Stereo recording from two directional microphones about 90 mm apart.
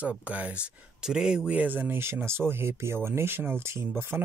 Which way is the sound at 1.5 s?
20° right (ahead or behind).